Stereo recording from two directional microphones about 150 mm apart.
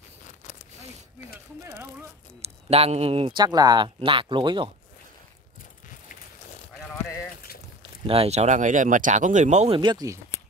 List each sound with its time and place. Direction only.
2.4 s speech: 45° right (ahead or behind)
8.1 s speech: 45° right (ahead or behind)
9.8 s speech: 30° right (ahead or behind)